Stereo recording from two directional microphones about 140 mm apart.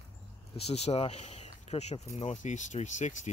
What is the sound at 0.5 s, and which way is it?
Speech, 50° left (ahead or behind).